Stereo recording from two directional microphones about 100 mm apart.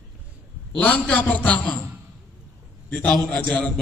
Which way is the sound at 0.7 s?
15° left (ahead or behind).